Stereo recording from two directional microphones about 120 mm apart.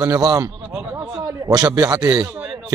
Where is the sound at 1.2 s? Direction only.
30° right (ahead or behind).